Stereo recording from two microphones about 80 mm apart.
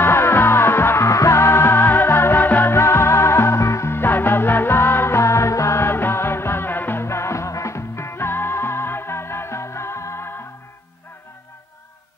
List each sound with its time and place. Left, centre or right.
0.0 s music: left